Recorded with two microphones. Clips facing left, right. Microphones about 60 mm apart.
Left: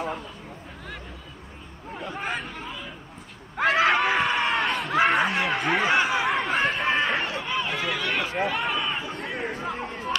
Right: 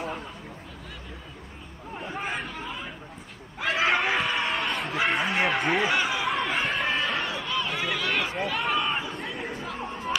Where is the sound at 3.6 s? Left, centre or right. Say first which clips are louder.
Left 4 dB; left.